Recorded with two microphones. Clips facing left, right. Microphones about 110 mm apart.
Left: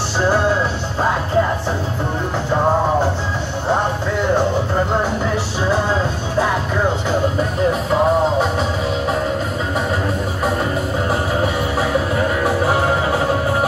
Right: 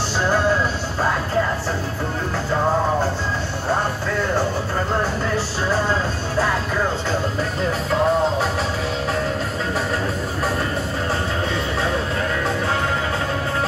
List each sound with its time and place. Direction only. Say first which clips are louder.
0.2 s music: left 3 dB; 15° left (ahead or behind)
3.6 s music: left 4 dB; 20° left (ahead or behind)
7.9 s music: left 1 dB; 5° left (ahead or behind)
12.2 s music: left 5 dB; 20° left (ahead or behind)